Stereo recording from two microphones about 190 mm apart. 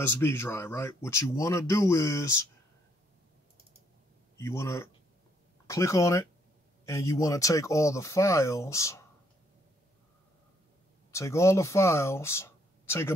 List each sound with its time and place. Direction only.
0.0 s speech: 10° left (ahead or behind)
4.4 s speech: 15° left (ahead or behind)
11.1 s speech: 15° left (ahead or behind)